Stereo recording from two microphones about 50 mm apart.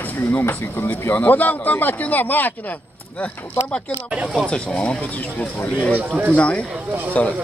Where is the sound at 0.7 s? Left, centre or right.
Left.